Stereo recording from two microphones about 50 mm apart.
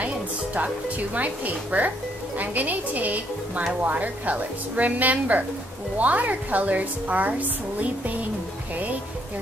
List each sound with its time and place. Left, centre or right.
0.6 s a woman's voice: right